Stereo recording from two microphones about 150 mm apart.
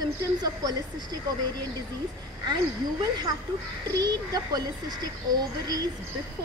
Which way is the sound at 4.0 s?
25° right (ahead or behind).